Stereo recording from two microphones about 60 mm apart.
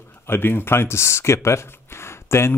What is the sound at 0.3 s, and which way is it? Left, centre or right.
Speech, left.